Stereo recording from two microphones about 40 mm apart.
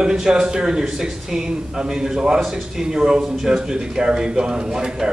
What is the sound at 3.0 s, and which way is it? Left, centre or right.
Speech, centre.